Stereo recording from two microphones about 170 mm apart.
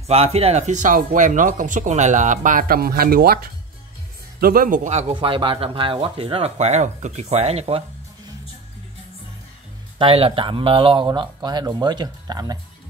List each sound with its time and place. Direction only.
0.0 s speech: 35° right (ahead or behind)
5.1 s speech: 30° right (ahead or behind)
9.9 s speech: 35° right (ahead or behind)